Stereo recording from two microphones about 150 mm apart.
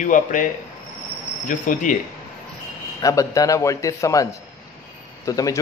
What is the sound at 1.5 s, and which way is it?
Speech, 60° left (ahead or behind).